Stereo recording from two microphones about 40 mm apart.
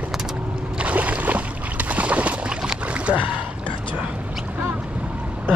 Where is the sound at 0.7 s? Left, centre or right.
Right.